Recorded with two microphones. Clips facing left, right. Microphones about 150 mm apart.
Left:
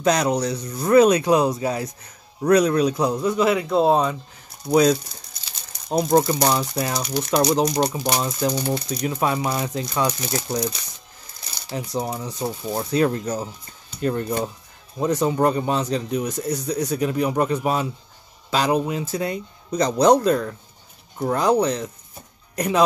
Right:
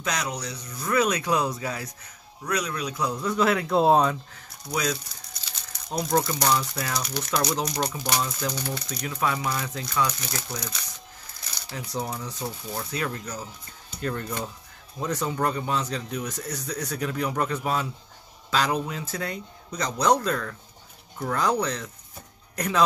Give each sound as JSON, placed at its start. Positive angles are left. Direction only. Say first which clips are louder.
{"t": 0.0, "sound": "speech", "louder": "left 11 dB", "side_deg": 35}
{"t": 2.4, "sound": "speech", "louder": "left 13 dB", "side_deg": 40}
{"t": 3.2, "sound": "a man's voice", "louder": "left 4 dB", "side_deg": 10}
{"t": 5.9, "sound": "speech", "louder": "left 7 dB", "side_deg": 30}
{"t": 11.9, "sound": "a man's voice", "louder": "left 3 dB", "side_deg": 15}
{"t": 12.7, "sound": "speech", "louder": "left 12 dB", "side_deg": 30}